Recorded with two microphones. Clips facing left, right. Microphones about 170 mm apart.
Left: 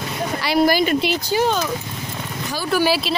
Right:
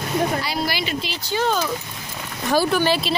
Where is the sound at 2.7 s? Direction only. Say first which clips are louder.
Left 1 dB; 5° left (ahead or behind).